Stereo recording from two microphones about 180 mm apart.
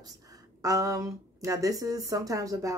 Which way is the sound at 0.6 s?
20° right (ahead or behind).